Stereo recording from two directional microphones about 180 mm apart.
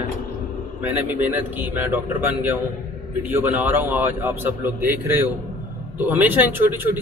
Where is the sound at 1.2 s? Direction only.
10° right (ahead or behind).